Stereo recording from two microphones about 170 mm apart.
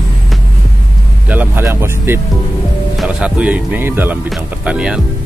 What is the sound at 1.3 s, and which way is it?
Speech, 10° right (ahead or behind).